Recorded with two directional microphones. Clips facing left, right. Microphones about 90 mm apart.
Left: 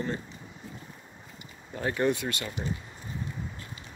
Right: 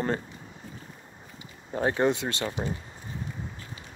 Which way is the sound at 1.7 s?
30° right (ahead or behind).